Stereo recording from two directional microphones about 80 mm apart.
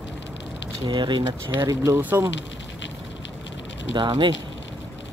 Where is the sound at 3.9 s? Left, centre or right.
Right.